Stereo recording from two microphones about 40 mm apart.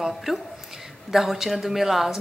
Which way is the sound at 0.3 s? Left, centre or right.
Centre.